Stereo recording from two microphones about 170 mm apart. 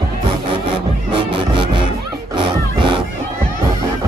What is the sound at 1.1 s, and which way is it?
Music, 30° right (ahead or behind).